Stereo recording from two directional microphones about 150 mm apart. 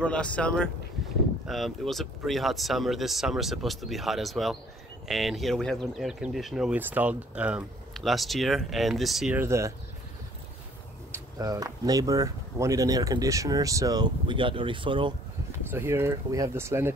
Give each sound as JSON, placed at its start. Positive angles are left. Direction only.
{"t": 0.0, "sound": "speech", "side_deg": 10}
{"t": 9.4, "sound": "speech", "side_deg": -20}
{"t": 11.1, "sound": "speech", "side_deg": -25}
{"t": 15.7, "sound": "speech", "side_deg": -15}